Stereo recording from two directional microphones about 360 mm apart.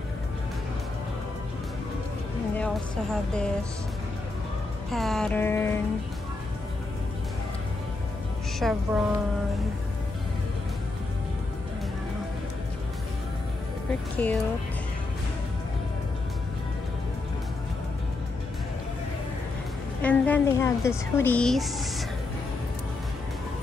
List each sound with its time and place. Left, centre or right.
2.5 s speech: centre
4.9 s a woman's voice: centre
8.5 s a woman's voice: centre
14.1 s a woman's voice: centre
20.0 s a woman's voice: centre